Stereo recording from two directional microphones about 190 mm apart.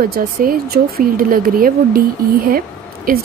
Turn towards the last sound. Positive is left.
turn(degrees=-50)  # may be behind; listen again after turning